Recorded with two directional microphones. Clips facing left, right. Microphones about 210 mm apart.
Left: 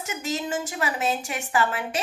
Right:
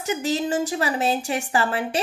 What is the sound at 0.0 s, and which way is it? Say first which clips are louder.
A woman's voice: right 6 dB; 35° right (ahead or behind).